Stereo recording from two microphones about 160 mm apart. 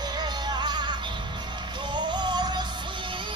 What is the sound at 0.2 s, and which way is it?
Music, 25° right (ahead or behind).